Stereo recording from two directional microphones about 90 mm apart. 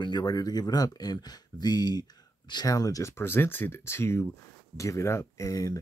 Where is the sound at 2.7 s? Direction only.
40° left (ahead or behind).